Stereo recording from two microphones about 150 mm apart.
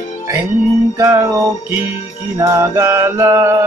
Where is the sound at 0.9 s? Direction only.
20° right (ahead or behind).